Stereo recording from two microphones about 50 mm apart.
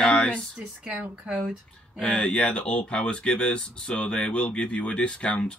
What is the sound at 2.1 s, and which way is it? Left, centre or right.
Speech, left.